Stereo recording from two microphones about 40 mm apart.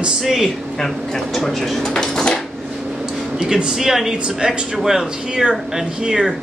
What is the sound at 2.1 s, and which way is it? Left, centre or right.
Dishes, centre.